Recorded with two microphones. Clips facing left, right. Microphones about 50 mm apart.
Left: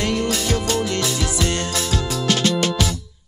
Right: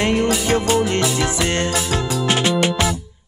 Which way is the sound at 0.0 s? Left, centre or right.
Right.